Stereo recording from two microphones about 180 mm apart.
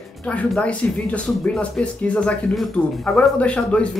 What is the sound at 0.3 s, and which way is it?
Speech, 5° left (ahead or behind).